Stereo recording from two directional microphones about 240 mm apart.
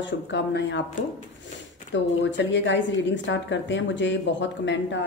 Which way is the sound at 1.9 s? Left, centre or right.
Left.